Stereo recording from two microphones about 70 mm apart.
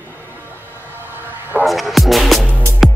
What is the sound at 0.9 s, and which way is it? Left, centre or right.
Music, right.